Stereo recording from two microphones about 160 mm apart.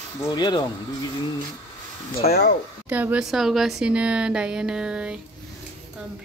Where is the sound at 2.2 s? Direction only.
80° left.